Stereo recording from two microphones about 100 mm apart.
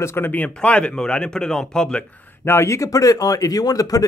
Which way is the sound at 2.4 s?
25° left (ahead or behind).